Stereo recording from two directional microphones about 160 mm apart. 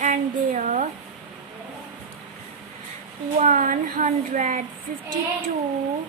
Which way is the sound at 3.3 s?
55° right (ahead or behind).